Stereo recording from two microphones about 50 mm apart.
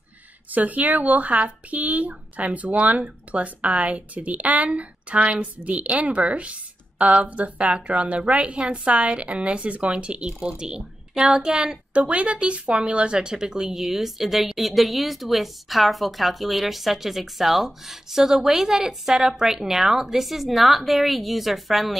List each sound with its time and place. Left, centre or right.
0.5 s speech: right; by 11.8 s centre
11.9 s speech: right; by 21.9 s centre